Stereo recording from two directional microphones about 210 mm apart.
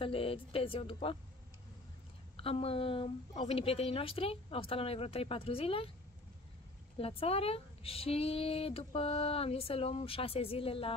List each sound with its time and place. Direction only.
0.0 s speech: 25° left (ahead or behind)
2.3 s speech: 25° left (ahead or behind)
7.0 s speech: 30° left (ahead or behind)